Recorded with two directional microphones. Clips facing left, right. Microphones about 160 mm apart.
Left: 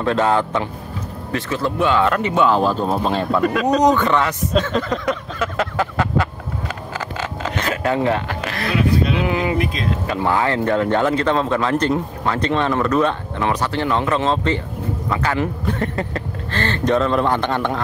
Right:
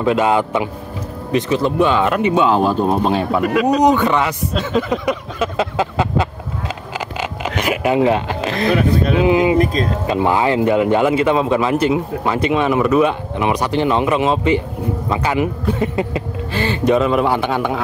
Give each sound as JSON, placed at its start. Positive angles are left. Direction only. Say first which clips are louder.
{"t": 0.0, "sound": "speech", "louder": "right 2 dB", "side_deg": -15}
{"t": 8.7, "sound": "speech", "louder": "left 1 dB", "side_deg": -50}
{"t": 9.2, "sound": "speech", "louder": "right 7 dB", "side_deg": -20}
{"t": 9.6, "sound": "speech", "louder": "right 6 dB", "side_deg": -40}
{"t": 10.0, "sound": "speech", "louder": "right 3 dB", "side_deg": -20}